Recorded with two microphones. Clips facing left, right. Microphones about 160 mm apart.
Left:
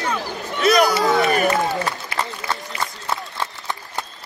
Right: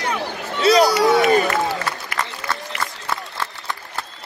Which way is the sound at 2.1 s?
20° left (ahead or behind).